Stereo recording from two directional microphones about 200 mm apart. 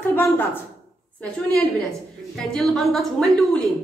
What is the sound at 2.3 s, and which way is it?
A woman's voice, centre (ahead or behind).